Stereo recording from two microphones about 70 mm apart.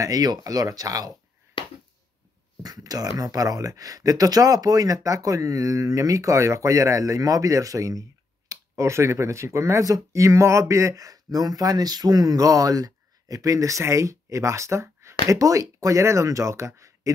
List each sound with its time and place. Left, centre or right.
0.0 s speech: right
2.6 s speech: right
8.5 s speech: right